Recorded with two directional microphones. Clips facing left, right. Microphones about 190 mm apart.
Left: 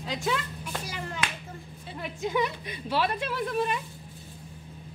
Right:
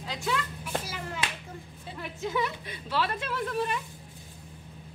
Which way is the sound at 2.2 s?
15° left (ahead or behind).